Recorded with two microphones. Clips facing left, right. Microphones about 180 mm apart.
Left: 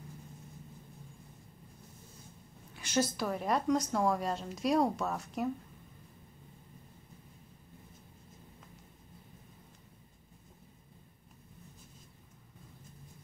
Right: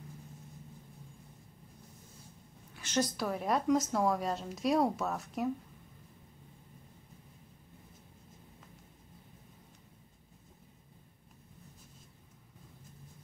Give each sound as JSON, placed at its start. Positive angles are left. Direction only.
{"t": 2.7, "sound": "a woman's voice", "side_deg": 10}